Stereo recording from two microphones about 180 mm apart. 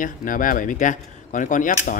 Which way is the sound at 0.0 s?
50° left (ahead or behind).